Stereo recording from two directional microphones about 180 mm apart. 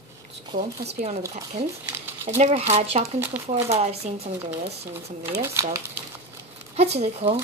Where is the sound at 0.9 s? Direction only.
35° right (ahead or behind).